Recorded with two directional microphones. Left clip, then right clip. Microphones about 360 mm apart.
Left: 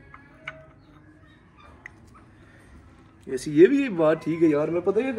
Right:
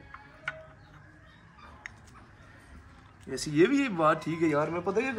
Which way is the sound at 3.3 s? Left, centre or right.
Right.